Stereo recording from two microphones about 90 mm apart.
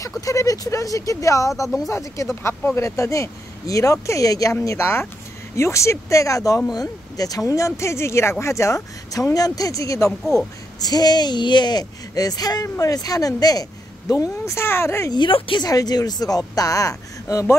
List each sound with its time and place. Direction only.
0.2 s speech: 40° left (ahead or behind)
4.6 s speech: 30° left (ahead or behind)
10.8 s speech: 45° left (ahead or behind); by 15.0 s 30° left (ahead or behind)
15.0 s speech: 65° left (ahead or behind)
15.6 s speech: 45° left (ahead or behind)